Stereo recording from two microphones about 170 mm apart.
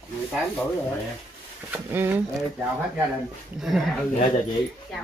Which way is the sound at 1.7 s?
10° right (ahead or behind).